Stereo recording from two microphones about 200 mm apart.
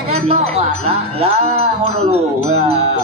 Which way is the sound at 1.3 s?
30° right (ahead or behind).